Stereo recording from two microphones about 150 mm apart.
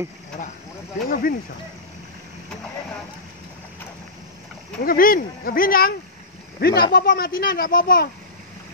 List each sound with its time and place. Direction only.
1.0 s speech: 70° left (ahead or behind)
4.8 s speech: 75° left (ahead or behind)
6.6 s speech: 90° left; by 8.1 s 75° left (ahead or behind)